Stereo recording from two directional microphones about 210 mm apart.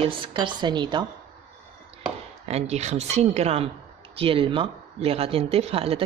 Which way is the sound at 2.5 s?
30° right (ahead or behind).